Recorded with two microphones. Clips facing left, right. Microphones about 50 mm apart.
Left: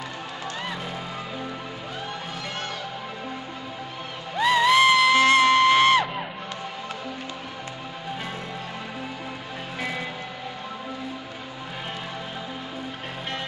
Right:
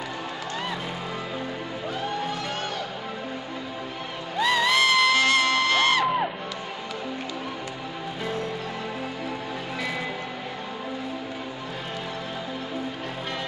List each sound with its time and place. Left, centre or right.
4.4 s music: centre